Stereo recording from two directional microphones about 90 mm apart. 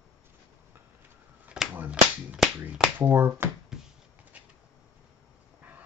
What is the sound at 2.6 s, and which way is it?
Finger snapping, 20° right (ahead or behind).